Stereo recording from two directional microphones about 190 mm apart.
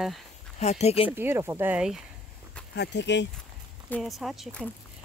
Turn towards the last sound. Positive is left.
turn(degrees=0)  # may be behind; listen again after turning